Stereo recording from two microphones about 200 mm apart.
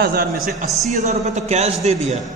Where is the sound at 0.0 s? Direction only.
50° right (ahead or behind).